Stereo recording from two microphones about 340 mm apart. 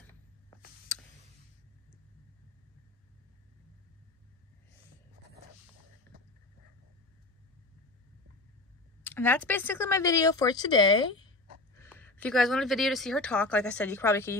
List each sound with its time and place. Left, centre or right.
9.0 s a woman's voice: centre